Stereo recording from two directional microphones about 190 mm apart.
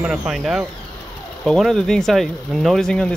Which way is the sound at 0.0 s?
Centre (ahead or behind).